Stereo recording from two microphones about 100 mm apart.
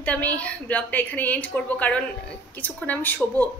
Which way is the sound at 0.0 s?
15° left (ahead or behind).